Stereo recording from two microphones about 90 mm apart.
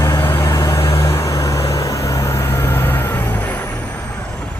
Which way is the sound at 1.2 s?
40° left (ahead or behind).